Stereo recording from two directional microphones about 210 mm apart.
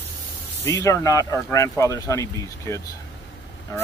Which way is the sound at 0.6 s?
15° left (ahead or behind).